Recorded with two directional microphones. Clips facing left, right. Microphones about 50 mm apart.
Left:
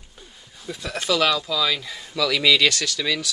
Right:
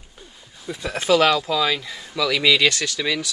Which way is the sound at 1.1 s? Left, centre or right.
Right.